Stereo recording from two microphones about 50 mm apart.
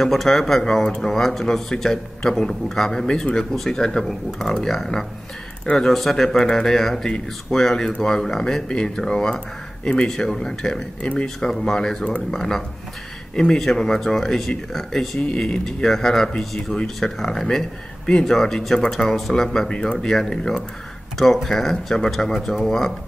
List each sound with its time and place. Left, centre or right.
0.0 s a man's voice: centre
11.0 s speech: left
11.6 s a man's voice: centre
15.2 s speech: left
15.6 s a man's voice: centre
19.7 s a man's voice: centre